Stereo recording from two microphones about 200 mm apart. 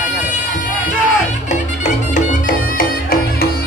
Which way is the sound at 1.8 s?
40° left (ahead or behind).